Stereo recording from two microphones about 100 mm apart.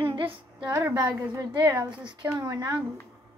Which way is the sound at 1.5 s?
35° right (ahead or behind).